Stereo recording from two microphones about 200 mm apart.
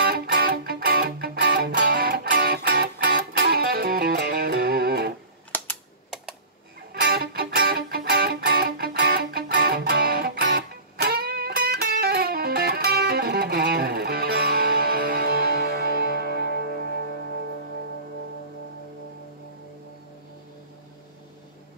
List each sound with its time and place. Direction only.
0.0 s music: 50° right (ahead or behind)
5.5 s computer keyboard: 10° left (ahead or behind)
6.9 s music: 50° right (ahead or behind)